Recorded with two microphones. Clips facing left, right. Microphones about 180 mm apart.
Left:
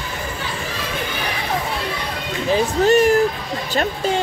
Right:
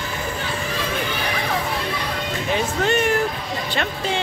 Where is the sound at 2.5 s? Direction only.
35° left (ahead or behind).